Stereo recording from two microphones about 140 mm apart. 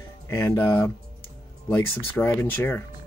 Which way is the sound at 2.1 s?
15° left (ahead or behind).